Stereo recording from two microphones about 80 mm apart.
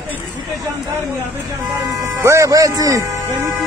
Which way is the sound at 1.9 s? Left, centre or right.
Right.